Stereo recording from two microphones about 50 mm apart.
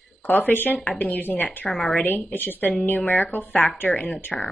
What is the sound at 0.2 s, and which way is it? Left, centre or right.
A woman's voice, left.